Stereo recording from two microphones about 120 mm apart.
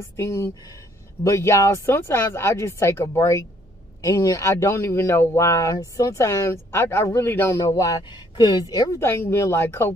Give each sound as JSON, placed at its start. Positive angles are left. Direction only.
{"t": 0.1, "sound": "speech", "side_deg": 25}
{"t": 9.0, "sound": "speech", "side_deg": 20}